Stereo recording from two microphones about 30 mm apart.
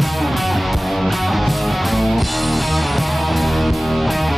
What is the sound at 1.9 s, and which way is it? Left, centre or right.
Music, centre.